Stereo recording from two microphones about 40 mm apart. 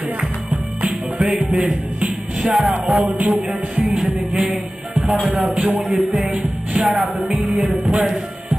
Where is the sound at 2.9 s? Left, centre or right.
Right.